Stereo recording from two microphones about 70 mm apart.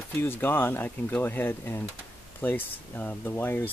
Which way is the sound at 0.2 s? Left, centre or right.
Left.